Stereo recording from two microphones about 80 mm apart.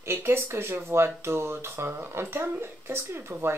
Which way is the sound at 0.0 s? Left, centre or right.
Right.